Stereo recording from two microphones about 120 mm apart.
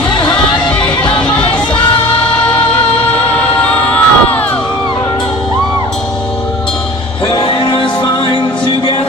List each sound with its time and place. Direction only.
0.3 s music: 10° left (ahead or behind)
3.8 s crowd: 10° left (ahead or behind)
7.2 s music: 45° left (ahead or behind)